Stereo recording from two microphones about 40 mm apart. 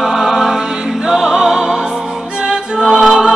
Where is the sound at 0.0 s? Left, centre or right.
Centre.